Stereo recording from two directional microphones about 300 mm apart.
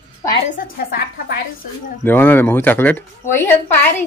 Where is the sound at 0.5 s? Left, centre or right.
Left.